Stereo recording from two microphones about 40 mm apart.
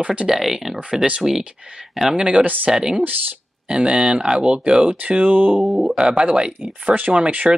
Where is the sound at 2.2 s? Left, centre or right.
Right.